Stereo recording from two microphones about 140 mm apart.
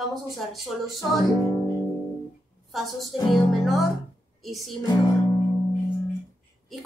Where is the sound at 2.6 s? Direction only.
Centre (ahead or behind).